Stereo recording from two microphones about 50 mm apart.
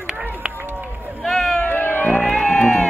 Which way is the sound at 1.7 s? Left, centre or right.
Left.